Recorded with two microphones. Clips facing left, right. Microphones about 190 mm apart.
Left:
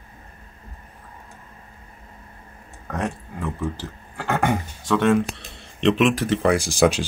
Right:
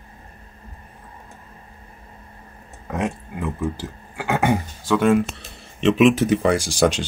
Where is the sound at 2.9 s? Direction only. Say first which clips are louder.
Right 2 dB; centre (ahead or behind).